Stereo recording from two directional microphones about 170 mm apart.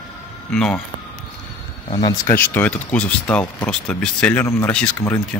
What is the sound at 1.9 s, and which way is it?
Speech, 30° left (ahead or behind).